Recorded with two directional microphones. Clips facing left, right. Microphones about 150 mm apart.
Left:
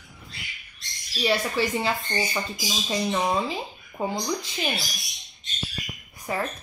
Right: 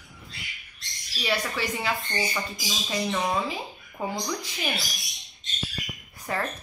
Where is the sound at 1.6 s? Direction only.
30° left (ahead or behind).